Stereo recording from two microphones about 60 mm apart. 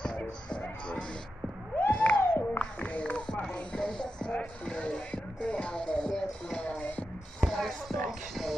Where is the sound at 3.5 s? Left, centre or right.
Centre.